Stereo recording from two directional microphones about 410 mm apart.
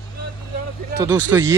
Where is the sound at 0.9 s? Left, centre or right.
Centre.